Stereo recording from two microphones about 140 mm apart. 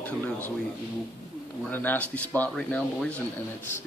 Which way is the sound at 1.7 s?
10° left (ahead or behind).